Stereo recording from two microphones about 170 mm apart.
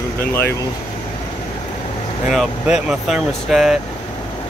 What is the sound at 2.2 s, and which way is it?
Speech, centre (ahead or behind).